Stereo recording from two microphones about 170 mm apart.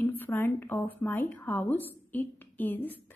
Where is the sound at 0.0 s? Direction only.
10° left (ahead or behind).